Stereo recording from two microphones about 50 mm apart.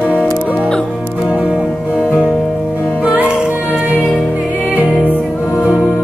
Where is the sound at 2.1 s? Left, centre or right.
Centre.